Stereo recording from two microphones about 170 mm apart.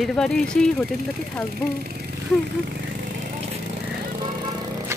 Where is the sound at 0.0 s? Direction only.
Centre (ahead or behind).